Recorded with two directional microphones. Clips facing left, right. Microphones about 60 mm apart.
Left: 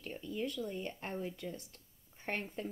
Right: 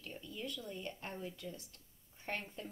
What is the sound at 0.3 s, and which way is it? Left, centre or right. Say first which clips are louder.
A woman's voice: left 7 dB; left.